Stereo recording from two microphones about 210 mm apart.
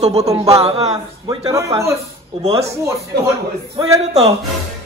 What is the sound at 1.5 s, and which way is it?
Speech, 15° right (ahead or behind).